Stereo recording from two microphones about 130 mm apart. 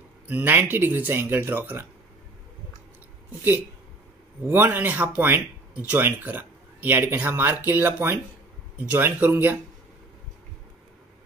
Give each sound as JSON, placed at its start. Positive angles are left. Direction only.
{"t": 0.3, "sound": "speech", "side_deg": -15}
{"t": 4.5, "sound": "speech", "side_deg": -15}